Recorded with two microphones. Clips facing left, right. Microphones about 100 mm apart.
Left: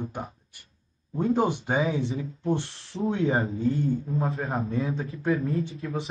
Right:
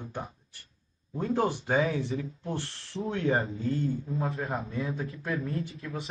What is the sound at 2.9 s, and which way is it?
Speech, 30° left (ahead or behind).